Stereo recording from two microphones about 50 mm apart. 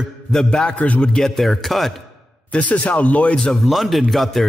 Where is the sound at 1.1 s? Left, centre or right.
Centre.